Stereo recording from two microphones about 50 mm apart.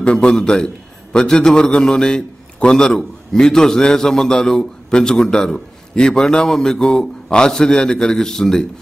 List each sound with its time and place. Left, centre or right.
0.0 s a man's voice: centre